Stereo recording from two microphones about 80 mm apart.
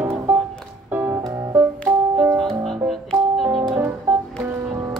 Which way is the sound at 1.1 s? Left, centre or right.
Right.